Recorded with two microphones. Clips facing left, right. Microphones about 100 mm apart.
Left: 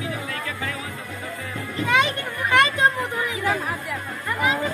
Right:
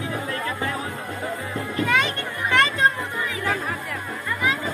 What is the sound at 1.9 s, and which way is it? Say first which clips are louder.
Chatter: left 6 dB; 15° left (ahead or behind).